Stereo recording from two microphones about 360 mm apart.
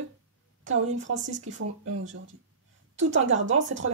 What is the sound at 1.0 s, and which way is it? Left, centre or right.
Speech, right.